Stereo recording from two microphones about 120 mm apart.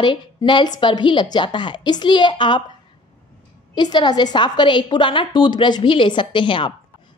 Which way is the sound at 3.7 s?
35° left (ahead or behind).